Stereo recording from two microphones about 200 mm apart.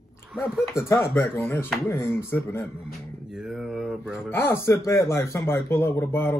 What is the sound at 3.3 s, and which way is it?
Speech, centre (ahead or behind).